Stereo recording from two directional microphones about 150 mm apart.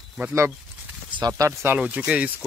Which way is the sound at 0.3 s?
15° right (ahead or behind).